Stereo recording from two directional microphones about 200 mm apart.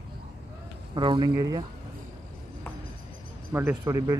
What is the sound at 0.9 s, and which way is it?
Speech, 25° right (ahead or behind).